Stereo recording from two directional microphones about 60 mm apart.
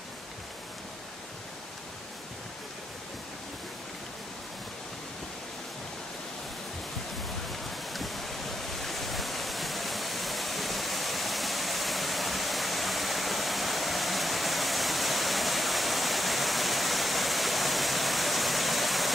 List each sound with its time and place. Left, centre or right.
7.4 s waves: centre